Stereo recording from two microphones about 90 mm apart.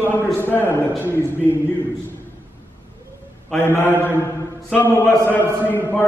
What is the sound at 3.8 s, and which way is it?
A man's voice, 25° left (ahead or behind).